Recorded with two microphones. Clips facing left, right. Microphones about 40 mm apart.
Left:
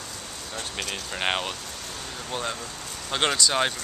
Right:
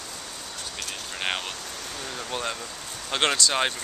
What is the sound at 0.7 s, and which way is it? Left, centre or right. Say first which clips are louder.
Speech: left 4 dB; left.